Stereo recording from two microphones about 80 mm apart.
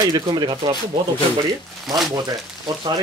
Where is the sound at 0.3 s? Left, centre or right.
Right.